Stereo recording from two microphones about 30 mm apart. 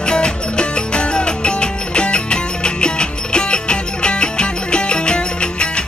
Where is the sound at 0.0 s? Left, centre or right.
Left.